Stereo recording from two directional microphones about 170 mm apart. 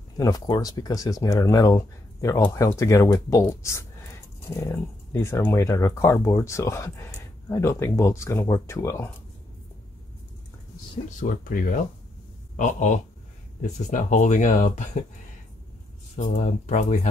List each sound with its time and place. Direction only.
0.2 s speech: 20° left (ahead or behind)
11.1 s speech: 50° left (ahead or behind)
16.2 s speech: 45° left (ahead or behind)